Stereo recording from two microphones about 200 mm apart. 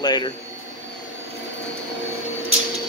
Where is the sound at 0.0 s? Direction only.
20° left (ahead or behind).